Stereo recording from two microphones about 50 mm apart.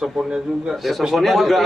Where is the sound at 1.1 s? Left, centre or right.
Centre.